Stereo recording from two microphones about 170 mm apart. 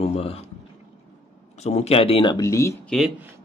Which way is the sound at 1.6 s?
40° left (ahead or behind).